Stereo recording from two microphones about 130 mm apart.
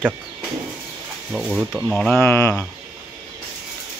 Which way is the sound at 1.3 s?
5° right (ahead or behind).